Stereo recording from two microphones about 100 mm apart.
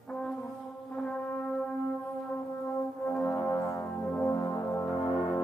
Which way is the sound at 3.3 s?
40° left (ahead or behind).